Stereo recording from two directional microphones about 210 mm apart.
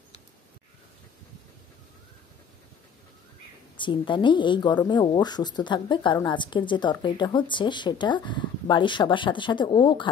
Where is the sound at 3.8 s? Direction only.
25° left (ahead or behind).